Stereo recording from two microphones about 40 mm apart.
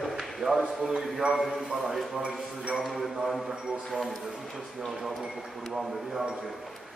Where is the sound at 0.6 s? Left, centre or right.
Centre.